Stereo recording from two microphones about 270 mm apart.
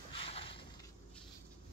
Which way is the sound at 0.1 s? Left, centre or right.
Left.